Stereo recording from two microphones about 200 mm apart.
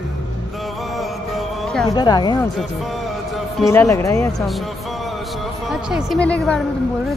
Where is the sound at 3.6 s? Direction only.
15° left (ahead or behind).